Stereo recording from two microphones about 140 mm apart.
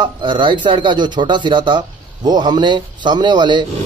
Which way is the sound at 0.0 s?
35° right (ahead or behind).